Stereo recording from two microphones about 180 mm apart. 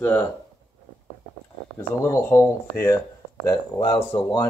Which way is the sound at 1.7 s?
15° left (ahead or behind).